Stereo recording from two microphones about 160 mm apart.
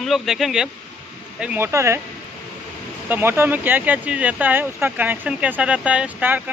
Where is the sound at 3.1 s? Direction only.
15° right (ahead or behind).